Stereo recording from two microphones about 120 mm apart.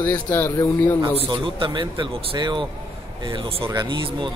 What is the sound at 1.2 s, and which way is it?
A man's voice, 45° right (ahead or behind).